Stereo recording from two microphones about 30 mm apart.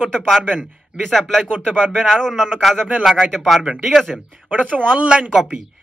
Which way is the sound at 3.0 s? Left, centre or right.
Centre.